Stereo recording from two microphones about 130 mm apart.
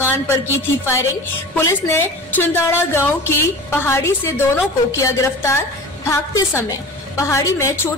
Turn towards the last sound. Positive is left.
turn(degrees=20)  # may be behind; listen again after turning